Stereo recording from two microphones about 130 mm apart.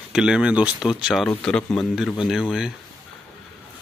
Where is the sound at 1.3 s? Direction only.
10° left (ahead or behind).